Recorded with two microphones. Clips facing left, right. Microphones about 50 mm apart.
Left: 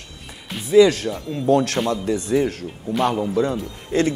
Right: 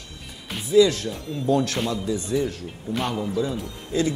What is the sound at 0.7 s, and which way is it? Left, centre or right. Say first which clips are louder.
A man's voice: left 4 dB; left.